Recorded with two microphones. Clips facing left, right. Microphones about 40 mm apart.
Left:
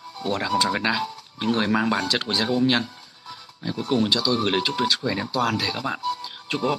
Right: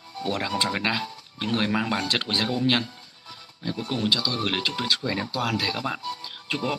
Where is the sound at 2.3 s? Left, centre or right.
Centre.